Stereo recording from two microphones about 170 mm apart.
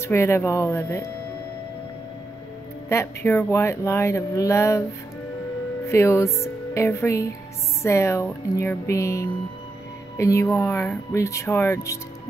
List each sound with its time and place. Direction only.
0.0 s speech: 15° left (ahead or behind)
2.9 s speech: 15° left (ahead or behind)
5.9 s speech: 15° left (ahead or behind)